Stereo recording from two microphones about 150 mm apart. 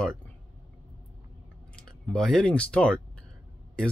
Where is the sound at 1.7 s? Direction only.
5° left (ahead or behind).